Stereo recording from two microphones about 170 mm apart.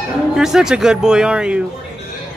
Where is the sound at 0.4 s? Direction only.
5° right (ahead or behind).